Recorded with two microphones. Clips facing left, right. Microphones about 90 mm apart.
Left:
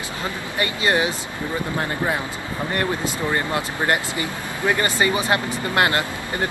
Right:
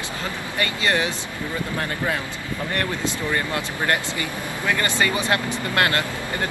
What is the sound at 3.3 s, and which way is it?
Speech, 20° left (ahead or behind).